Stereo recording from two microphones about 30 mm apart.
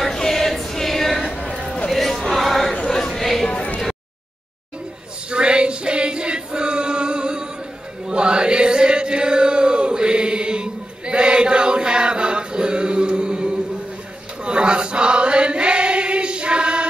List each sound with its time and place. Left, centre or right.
0.1 s choir: centre
0.7 s a sound: centre
1.9 s crowd: centre
2.3 s choir: centre
2.9 s chatter: centre
5.3 s choir: right
8.1 s chant: right
14.4 s choir: right